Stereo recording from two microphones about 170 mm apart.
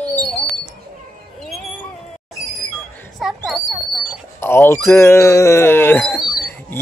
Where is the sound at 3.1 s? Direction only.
Centre (ahead or behind).